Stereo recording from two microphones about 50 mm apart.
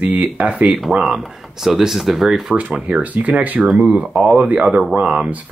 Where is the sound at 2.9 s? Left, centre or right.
Right.